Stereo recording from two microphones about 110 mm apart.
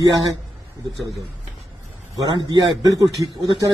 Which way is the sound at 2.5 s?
35° right (ahead or behind).